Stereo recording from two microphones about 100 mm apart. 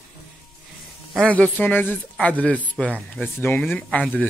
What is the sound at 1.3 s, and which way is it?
Speech, 15° left (ahead or behind).